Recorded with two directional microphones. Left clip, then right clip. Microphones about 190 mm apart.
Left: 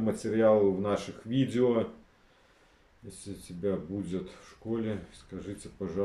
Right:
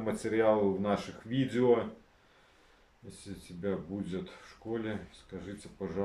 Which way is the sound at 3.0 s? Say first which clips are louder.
Left 3 dB; 15° left (ahead or behind).